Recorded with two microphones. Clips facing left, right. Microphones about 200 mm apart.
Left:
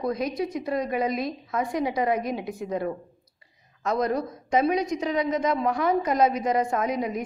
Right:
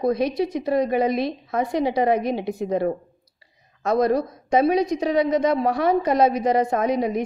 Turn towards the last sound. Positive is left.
turn(degrees=-30)  # may be behind; listen again after turning